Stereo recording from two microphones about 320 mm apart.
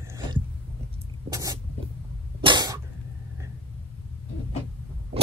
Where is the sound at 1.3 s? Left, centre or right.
Centre.